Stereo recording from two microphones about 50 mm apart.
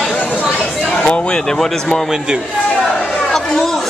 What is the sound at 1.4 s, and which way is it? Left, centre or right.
Speech, centre.